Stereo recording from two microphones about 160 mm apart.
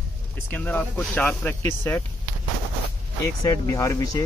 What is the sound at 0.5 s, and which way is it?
Speech, 10° left (ahead or behind).